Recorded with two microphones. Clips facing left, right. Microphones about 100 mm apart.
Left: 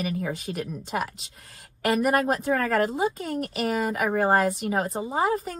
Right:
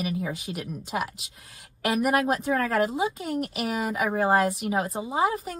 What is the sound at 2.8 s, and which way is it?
Speech, 5° right (ahead or behind).